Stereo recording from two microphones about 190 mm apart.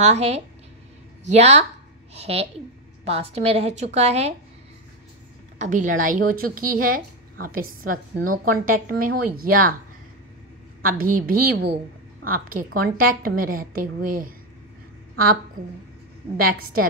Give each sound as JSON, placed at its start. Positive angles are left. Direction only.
{"t": 0.0, "sound": "a woman's voice", "side_deg": -35}
{"t": 5.6, "sound": "a woman's voice", "side_deg": -45}
{"t": 10.9, "sound": "a woman's voice", "side_deg": -45}
{"t": 16.3, "sound": "a woman's voice", "side_deg": -50}